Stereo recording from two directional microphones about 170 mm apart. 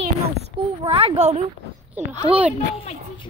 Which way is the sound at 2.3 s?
10° right (ahead or behind).